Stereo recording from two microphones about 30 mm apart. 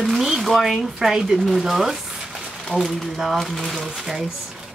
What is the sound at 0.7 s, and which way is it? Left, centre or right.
Speech, centre.